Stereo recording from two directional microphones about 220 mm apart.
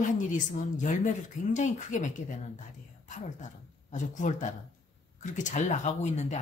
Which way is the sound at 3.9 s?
35° left (ahead or behind).